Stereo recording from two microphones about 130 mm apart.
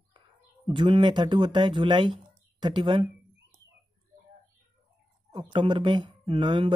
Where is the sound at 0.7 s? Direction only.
35° right (ahead or behind).